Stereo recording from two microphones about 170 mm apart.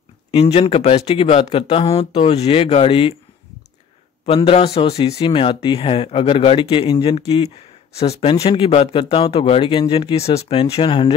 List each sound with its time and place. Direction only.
0.3 s speech: 35° left (ahead or behind)
4.3 s speech: 35° left (ahead or behind)